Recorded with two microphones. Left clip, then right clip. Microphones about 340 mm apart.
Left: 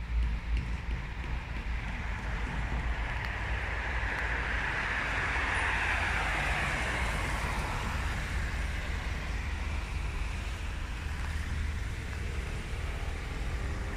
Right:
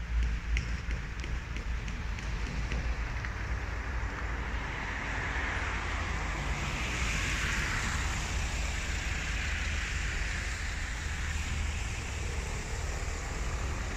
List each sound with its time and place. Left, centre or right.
4.6 s vehicle: left